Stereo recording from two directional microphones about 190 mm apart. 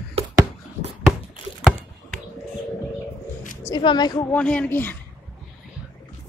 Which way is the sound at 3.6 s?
25° left (ahead or behind).